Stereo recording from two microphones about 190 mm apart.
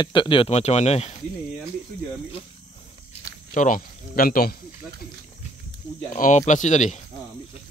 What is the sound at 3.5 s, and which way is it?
Speech, 45° left (ahead or behind).